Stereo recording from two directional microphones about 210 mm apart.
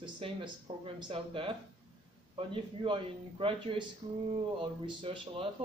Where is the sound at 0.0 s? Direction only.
25° right (ahead or behind).